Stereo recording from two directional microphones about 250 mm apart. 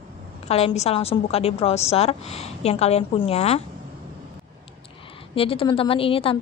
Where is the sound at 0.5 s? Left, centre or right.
Left.